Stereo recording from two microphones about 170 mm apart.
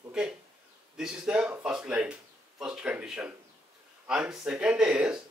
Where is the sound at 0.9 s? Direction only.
5° right (ahead or behind).